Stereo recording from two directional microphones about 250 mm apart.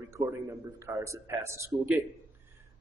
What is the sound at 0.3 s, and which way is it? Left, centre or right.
Speech, centre.